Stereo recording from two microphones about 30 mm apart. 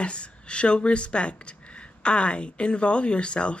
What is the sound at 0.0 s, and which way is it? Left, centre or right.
Speech, left.